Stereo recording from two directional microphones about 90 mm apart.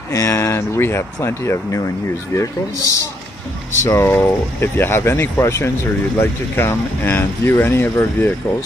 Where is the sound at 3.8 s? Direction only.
30° left (ahead or behind).